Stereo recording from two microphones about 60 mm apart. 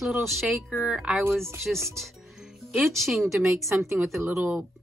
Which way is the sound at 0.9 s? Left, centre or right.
Centre.